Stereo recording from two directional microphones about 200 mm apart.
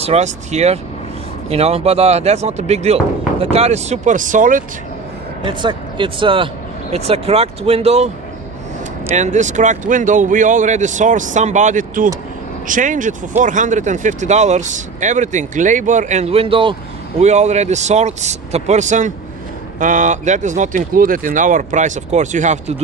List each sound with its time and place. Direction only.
0.0 s speech: 35° right (ahead or behind)
5.4 s speech: 25° right (ahead or behind)
9.1 s speech: 35° right (ahead or behind)